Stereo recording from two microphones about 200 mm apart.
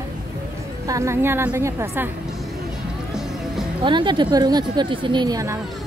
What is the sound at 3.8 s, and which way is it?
Speech, 25° right (ahead or behind).